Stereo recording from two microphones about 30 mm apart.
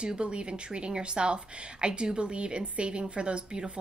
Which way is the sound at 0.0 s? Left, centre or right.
Right.